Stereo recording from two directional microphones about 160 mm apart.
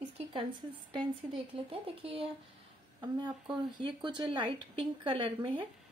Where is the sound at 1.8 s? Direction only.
35° right (ahead or behind).